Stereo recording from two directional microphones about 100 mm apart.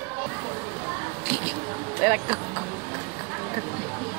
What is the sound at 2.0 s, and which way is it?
Speech, 20° right (ahead or behind).